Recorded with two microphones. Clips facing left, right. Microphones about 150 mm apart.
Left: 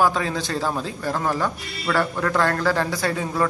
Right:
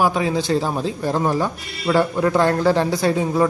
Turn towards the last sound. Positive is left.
turn(degrees=-20)  # may be behind; listen again after turning